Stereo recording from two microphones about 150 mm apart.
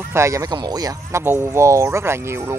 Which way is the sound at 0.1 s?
20° right (ahead or behind).